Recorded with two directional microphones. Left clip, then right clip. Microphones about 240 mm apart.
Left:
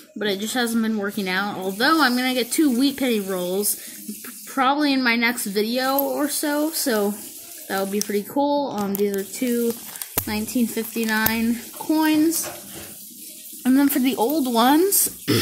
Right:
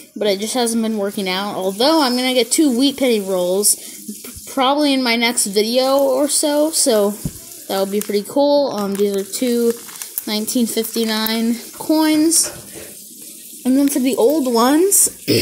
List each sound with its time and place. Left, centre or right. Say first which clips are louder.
0.2 s speech: right 6 dB; centre
11.4 s speech: right 5 dB; centre
13.7 s speech: right 4 dB; centre